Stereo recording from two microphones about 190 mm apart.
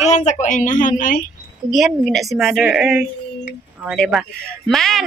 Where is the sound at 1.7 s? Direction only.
Centre (ahead or behind).